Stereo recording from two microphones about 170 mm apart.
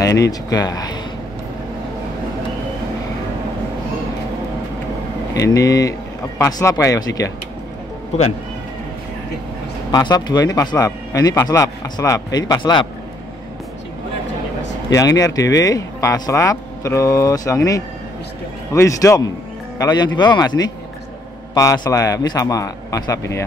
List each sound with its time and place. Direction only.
0.0 s speech: 20° left (ahead or behind)
5.3 s speech: 20° left (ahead or behind)
9.8 s speech: 25° left (ahead or behind)
14.9 s a man's voice: 20° left (ahead or behind)